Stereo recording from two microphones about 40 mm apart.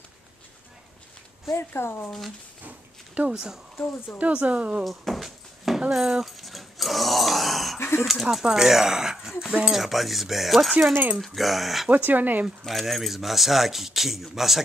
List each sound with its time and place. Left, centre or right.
1.6 s speech: left
3.3 s a woman's voice: centre
4.2 s speech: right
4.8 s a sound: centre
5.8 s dog: centre
8.0 s speech: centre
11.9 s speech: right
12.6 s speech: centre